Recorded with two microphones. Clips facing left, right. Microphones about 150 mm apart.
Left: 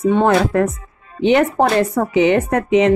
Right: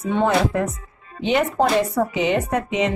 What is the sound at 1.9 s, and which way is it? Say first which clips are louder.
Speech: left 6 dB; 55° left (ahead or behind).